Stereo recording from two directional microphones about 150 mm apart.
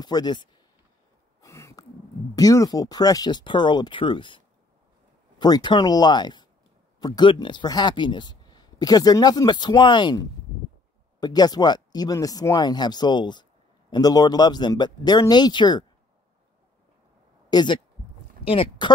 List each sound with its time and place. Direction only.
0.0 s speech: 30° left (ahead or behind)
1.4 s a sound: 20° left (ahead or behind)
2.3 s speech: 25° left (ahead or behind)
5.4 s speech: 30° left (ahead or behind)
17.5 s speech: 30° left (ahead or behind)